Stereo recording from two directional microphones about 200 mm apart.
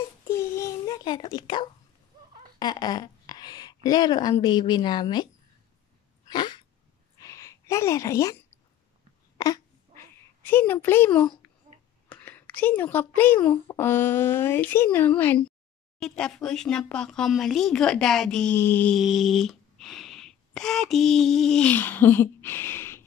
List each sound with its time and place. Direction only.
0.3 s babbling: 15° left (ahead or behind)
2.6 s speech: 20° left (ahead or behind)
6.2 s dog: 20° left (ahead or behind)
7.2 s a sound: 15° left (ahead or behind)
9.4 s a sound: 15° left (ahead or behind)
12.1 s a woman's voice: 10° left (ahead or behind)